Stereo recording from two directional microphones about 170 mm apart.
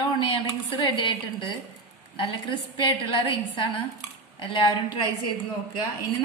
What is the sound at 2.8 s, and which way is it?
A woman's voice, 30° left (ahead or behind).